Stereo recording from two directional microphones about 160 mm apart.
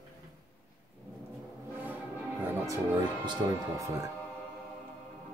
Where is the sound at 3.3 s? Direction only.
20° right (ahead or behind).